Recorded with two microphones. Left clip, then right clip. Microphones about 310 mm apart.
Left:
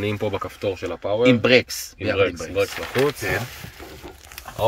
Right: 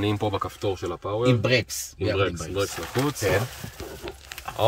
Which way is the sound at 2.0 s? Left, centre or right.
Centre.